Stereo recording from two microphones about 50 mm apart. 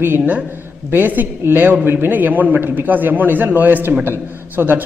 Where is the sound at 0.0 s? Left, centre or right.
Right.